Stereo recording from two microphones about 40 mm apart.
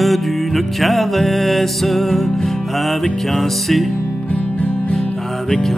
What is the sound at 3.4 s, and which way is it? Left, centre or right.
Music, centre.